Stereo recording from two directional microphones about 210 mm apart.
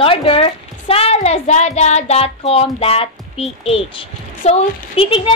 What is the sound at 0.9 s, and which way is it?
Child singing, 30° left (ahead or behind).